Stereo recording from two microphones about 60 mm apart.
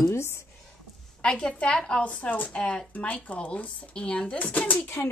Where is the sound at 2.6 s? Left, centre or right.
Centre.